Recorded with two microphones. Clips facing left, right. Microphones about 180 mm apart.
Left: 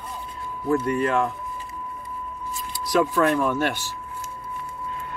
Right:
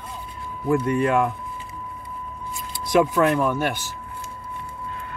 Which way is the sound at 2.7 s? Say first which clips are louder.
Right 3 dB; 25° right (ahead or behind).